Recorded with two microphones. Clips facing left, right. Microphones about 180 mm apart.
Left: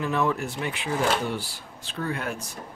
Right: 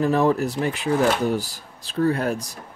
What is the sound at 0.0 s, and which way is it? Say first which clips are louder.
Speech: right 6 dB; 35° right (ahead or behind).